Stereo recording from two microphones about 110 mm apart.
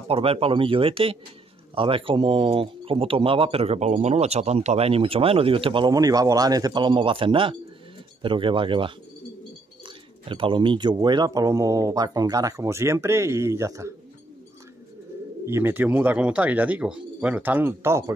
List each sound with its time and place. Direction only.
0.1 s speech: 60° right (ahead or behind)
5.9 s speech: 35° right (ahead or behind)
15.4 s speech: 20° right (ahead or behind)